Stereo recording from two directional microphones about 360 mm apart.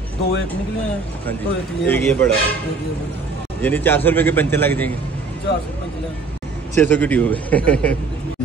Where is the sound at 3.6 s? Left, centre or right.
Centre.